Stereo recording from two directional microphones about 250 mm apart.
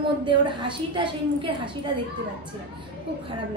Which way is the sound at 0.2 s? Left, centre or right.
Centre.